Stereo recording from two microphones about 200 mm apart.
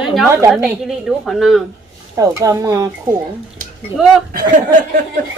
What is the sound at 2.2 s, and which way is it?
Speech, 15° right (ahead or behind).